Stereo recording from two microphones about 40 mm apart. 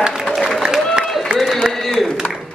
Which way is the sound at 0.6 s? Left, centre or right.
Centre.